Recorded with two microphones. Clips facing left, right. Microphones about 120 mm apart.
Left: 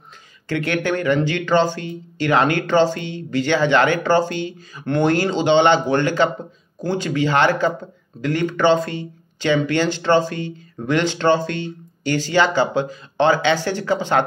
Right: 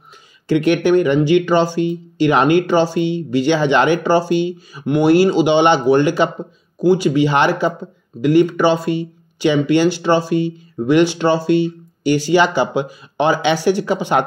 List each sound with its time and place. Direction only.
0.5 s speech: 15° right (ahead or behind)